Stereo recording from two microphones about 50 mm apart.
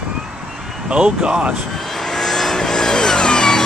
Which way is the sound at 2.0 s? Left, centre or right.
Centre.